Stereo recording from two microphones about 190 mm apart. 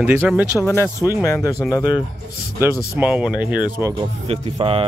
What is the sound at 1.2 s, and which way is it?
Speech, 20° left (ahead or behind).